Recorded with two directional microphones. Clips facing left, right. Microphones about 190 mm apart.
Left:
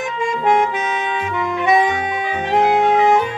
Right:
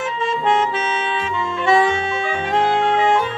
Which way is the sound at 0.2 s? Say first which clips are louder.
Left 3 dB; 15° left (ahead or behind).